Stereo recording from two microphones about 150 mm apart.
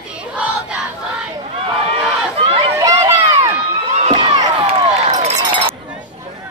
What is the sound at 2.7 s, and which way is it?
Run, 20° right (ahead or behind).